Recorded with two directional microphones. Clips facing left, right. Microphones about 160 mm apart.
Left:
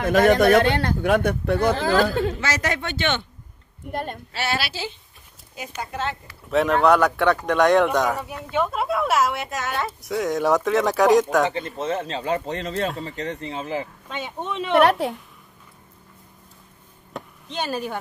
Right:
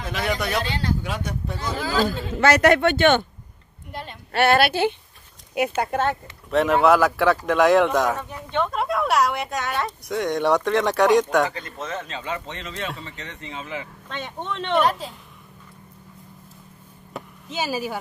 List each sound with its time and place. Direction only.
0.0 s speech: 50° left (ahead or behind)
2.4 s speech: 60° right (ahead or behind)
3.9 s speech: 50° left (ahead or behind)
4.3 s speech: 55° right (ahead or behind)
6.5 s speech: centre (ahead or behind)
11.8 s speech: 30° left (ahead or behind)
14.0 s speech: 10° left (ahead or behind)
14.8 s a woman's voice: 65° left (ahead or behind)
17.1 s chop: 5° right (ahead or behind)